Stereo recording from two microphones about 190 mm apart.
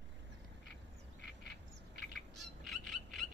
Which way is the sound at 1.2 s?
65° left (ahead or behind).